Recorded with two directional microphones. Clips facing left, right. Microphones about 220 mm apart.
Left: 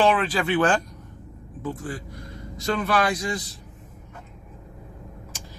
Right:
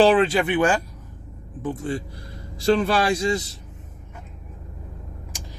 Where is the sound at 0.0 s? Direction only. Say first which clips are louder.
Right 5 dB; 30° right (ahead or behind).